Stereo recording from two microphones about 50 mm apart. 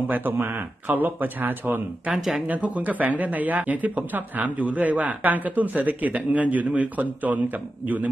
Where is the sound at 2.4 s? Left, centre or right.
Right.